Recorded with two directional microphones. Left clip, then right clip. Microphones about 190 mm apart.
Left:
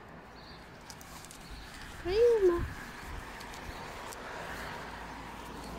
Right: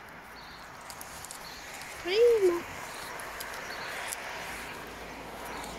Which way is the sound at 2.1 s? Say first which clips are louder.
Right 2 dB; 5° left (ahead or behind).